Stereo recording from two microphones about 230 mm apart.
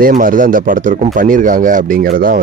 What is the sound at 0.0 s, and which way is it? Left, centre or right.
Speech, right.